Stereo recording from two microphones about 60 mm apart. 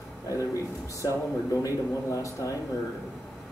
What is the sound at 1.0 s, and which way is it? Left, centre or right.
Speech, left.